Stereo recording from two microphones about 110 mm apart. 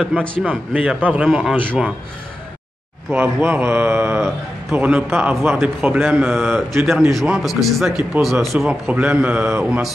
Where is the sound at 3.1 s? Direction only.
15° right (ahead or behind).